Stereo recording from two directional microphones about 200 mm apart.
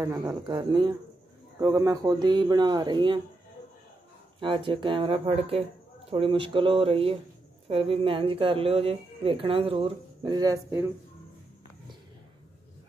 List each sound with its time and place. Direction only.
0.0 s speech: 15° right (ahead or behind)
4.4 s speech: 25° right (ahead or behind)